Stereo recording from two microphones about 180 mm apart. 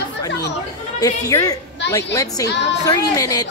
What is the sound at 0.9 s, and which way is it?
Speech, 20° left (ahead or behind).